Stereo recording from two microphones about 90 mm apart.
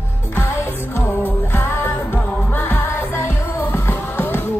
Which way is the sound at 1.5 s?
30° left (ahead or behind).